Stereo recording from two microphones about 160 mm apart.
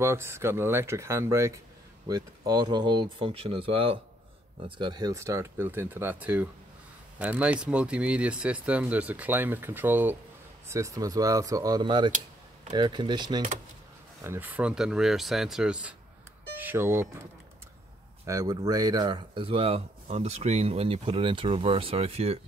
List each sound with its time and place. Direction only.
0.0 s speech: 15° right (ahead or behind)
14.2 s speech: 15° right (ahead or behind)
18.2 s speech: 20° right (ahead or behind); by 22.4 s 40° right (ahead or behind)